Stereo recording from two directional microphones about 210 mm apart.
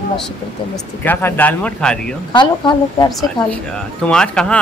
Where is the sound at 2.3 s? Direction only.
20° left (ahead or behind).